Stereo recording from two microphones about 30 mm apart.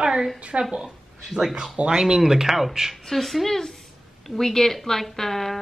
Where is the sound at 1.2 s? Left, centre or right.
Centre.